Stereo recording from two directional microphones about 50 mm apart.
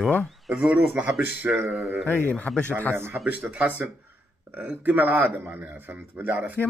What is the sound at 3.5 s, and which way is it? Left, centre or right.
Speech, right.